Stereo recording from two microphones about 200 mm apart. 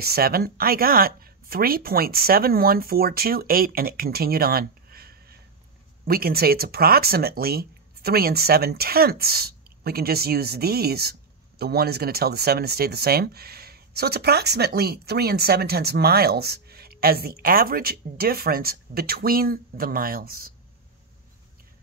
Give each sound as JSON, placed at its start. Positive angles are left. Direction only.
{"t": 0.0, "sound": "speech", "side_deg": -50}